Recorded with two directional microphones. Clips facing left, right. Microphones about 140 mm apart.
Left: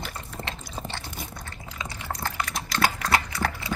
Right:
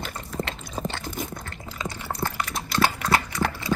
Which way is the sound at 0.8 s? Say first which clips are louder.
Right 7 dB; 45° right (ahead or behind).